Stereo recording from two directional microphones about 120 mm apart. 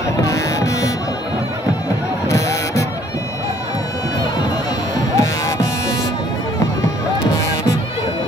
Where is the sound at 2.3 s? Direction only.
25° left (ahead or behind).